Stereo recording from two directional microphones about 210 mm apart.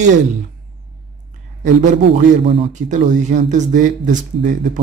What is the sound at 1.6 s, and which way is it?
A man's voice, 35° right (ahead or behind).